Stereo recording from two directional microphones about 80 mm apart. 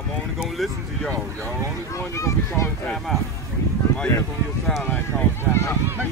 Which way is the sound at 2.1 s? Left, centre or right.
Left.